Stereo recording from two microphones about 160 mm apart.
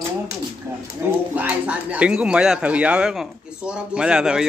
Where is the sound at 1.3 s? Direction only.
10° right (ahead or behind).